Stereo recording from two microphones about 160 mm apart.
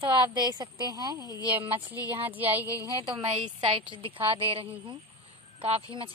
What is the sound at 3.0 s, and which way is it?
A woman's voice, 35° right (ahead or behind).